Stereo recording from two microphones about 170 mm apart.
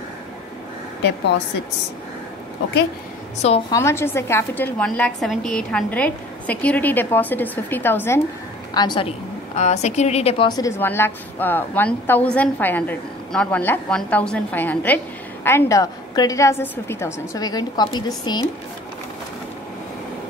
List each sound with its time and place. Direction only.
3.7 s a woman's voice: 15° left (ahead or behind)
8.7 s a woman's voice: 25° left (ahead or behind)
9.6 s a woman's voice: 40° left (ahead or behind); by 18.5 s 25° left (ahead or behind)